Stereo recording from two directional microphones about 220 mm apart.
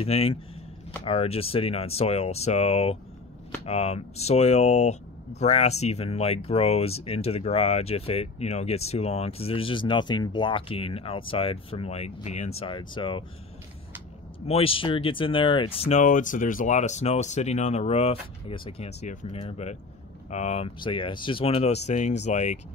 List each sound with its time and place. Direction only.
0.0 s speech: 25° left (ahead or behind)
14.5 s speech: 25° left (ahead or behind)